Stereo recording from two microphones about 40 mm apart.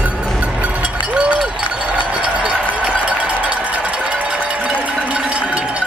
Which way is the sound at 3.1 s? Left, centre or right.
Right.